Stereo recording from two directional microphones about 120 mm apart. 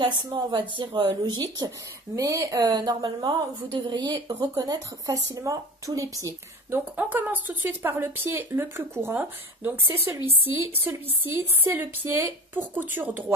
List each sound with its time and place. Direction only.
0.0 s a woman's voice: 40° right (ahead or behind)
6.7 s speech: 15° right (ahead or behind)